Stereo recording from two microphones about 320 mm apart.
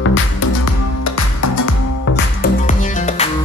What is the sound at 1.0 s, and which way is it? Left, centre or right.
Music, left.